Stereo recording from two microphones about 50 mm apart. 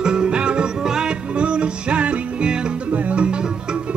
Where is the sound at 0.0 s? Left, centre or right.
Centre.